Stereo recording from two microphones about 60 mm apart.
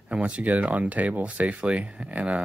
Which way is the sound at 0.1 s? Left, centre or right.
Right.